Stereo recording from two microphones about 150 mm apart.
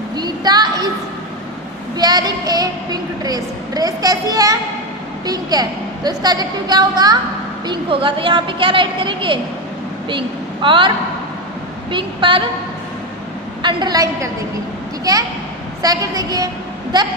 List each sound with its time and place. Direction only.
0.1 s a sound: 30° right (ahead or behind)
2.0 s a woman's voice: 25° right (ahead or behind)
11.9 s a woman's voice: 35° right (ahead or behind)
13.6 s a woman's voice: 30° right (ahead or behind)